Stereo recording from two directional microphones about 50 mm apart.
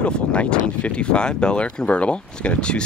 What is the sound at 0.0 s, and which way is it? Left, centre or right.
Speech, left.